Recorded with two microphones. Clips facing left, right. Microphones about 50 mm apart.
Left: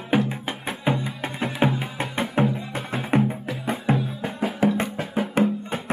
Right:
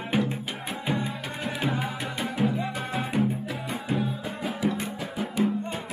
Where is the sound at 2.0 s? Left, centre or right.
Left.